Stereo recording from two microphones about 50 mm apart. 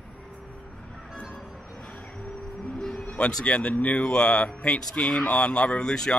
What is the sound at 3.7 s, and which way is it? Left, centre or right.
Speech, left.